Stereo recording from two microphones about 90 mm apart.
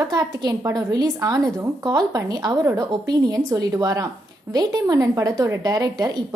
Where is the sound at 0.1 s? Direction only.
45° right (ahead or behind).